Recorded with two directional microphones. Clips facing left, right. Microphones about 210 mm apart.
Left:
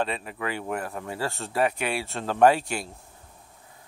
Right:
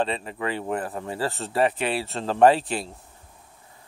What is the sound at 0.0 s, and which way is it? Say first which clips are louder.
Speech: right 3 dB; 5° left (ahead or behind).